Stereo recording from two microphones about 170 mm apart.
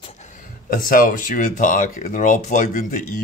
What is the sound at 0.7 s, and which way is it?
Speech, 55° left (ahead or behind).